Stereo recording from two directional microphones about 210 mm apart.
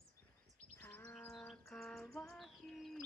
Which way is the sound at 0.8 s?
10° left (ahead or behind).